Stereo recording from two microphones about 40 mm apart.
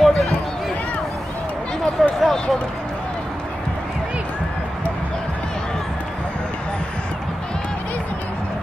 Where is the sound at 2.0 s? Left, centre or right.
Centre.